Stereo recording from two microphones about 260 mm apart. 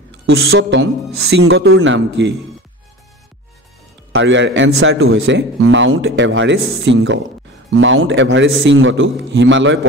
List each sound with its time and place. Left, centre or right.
0.3 s a man's voice: right
4.1 s a man's voice: right